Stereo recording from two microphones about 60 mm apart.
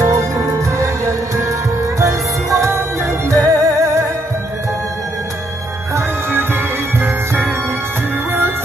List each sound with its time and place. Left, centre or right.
0.0 s music: right
5.9 s music: right